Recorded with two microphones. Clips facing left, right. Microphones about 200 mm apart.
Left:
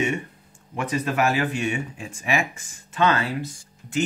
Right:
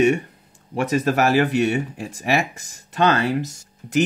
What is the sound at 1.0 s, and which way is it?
Speech, 40° right (ahead or behind).